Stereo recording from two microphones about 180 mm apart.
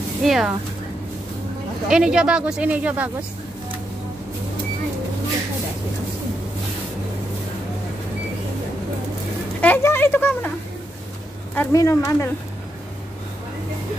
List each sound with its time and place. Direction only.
0.2 s speech: centre (ahead or behind)
1.9 s speech: 5° right (ahead or behind)
9.6 s a sound: 10° left (ahead or behind)
11.5 s speech: 15° left (ahead or behind)